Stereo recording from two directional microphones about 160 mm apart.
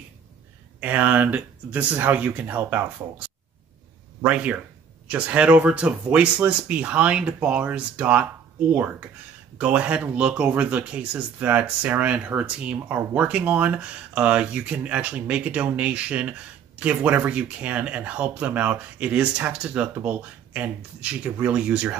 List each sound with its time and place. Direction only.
0.7 s speech: 10° right (ahead or behind)
9.6 s speech: 10° right (ahead or behind)